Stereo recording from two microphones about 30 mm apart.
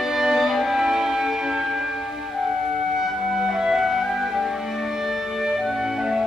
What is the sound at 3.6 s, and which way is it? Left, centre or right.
Music, centre.